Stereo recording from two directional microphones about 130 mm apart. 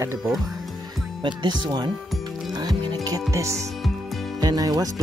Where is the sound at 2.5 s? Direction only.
30° right (ahead or behind).